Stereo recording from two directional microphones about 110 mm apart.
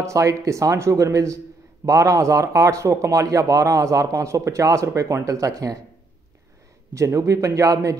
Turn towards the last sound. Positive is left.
turn(degrees=-30)  # may be behind; listen again after turning